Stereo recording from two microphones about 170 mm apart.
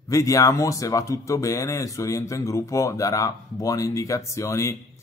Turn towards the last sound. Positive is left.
turn(degrees=15)  # may be behind; listen again after turning